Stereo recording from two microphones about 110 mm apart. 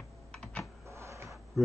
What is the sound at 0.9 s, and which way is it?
Printer, 25° right (ahead or behind).